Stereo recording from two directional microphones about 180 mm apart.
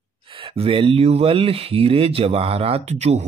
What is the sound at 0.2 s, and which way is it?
Speech, 30° right (ahead or behind).